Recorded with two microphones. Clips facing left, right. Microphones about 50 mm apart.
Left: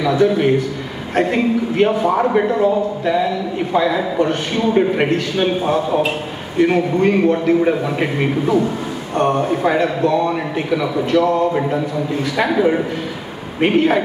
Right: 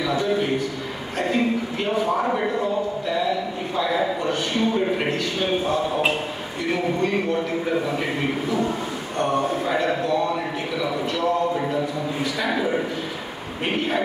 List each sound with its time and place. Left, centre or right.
0.0 s a man's voice: left
6.6 s a man's voice: left
10.8 s a man's voice: left
13.6 s a man's voice: left